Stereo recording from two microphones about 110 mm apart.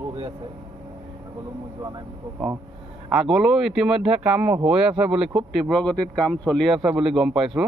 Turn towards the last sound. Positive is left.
turn(degrees=0)  # may be behind; listen again after turning